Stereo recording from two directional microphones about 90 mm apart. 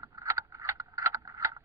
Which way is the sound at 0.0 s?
40° right (ahead or behind).